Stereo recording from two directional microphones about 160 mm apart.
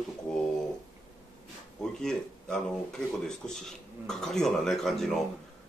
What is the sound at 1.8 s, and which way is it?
Speech, 5° left (ahead or behind).